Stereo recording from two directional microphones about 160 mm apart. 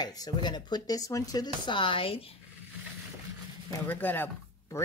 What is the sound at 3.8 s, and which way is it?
Speech, 10° left (ahead or behind).